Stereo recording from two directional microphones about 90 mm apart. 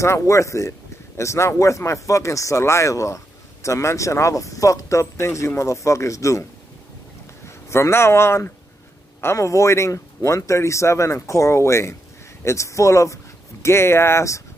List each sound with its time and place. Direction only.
0.0 s speech: 35° left (ahead or behind)
7.4 s speech: 30° left (ahead or behind)